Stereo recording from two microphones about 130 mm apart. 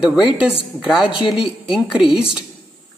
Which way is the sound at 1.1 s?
40° left (ahead or behind).